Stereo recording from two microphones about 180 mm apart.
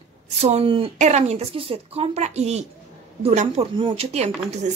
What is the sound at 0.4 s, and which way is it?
A woman's voice, 35° right (ahead or behind).